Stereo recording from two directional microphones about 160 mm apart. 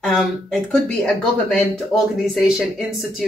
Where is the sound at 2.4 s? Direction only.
5° right (ahead or behind).